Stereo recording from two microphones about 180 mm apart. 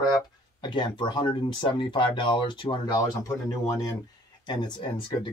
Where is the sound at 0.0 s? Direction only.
25° left (ahead or behind).